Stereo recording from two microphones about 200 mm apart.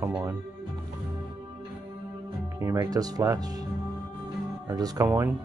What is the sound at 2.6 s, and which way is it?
Speech, 15° right (ahead or behind).